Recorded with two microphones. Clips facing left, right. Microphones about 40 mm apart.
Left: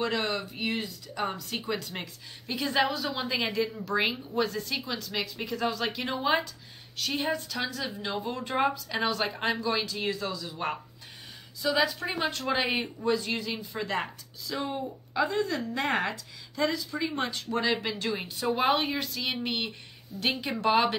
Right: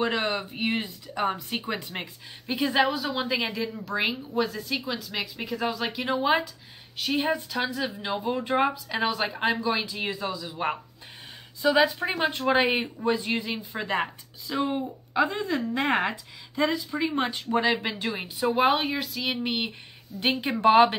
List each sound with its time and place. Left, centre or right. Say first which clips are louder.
0.0 s a woman's voice: right 3 dB; right
20.2 s speech: right 4 dB; right